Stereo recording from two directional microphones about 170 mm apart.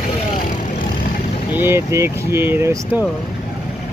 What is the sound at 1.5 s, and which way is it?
Speech, 10° right (ahead or behind).